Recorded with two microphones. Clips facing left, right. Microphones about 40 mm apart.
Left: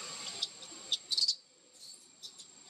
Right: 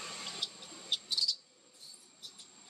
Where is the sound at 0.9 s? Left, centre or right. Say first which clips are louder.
Even; centre.